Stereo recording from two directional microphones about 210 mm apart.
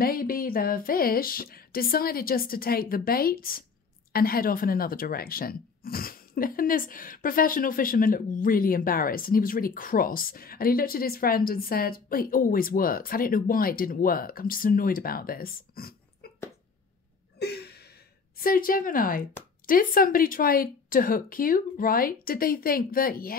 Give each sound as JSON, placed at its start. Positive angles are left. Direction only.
{"t": 0.0, "sound": "speech", "side_deg": 45}
{"t": 17.4, "sound": "gasp", "side_deg": 50}
{"t": 18.4, "sound": "speech", "side_deg": 45}